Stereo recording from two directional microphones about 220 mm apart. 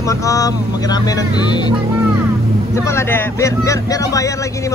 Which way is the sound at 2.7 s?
10° left (ahead or behind).